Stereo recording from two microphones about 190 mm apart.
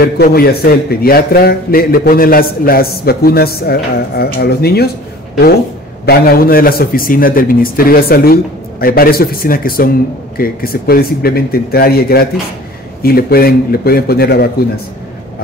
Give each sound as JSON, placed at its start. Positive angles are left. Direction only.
{"t": 0.0, "sound": "a man's voice", "side_deg": 55}
{"t": 6.0, "sound": "a man's voice", "side_deg": 55}